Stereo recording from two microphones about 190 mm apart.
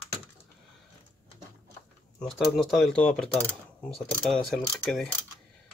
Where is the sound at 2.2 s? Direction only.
Centre (ahead or behind).